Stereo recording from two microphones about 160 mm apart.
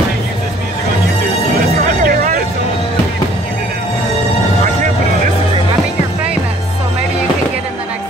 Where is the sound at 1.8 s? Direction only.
55° right (ahead or behind).